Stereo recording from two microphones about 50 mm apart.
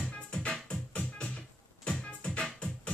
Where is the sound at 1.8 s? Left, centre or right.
Centre.